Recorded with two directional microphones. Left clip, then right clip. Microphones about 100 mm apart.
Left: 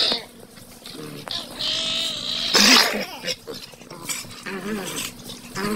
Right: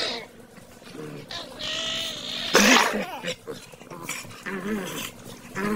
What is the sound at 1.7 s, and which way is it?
Vehicle, 45° left (ahead or behind).